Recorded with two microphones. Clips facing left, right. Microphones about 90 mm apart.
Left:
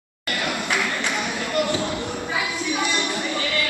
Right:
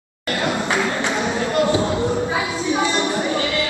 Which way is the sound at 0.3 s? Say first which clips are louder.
Right 4 dB; 20° right (ahead or behind).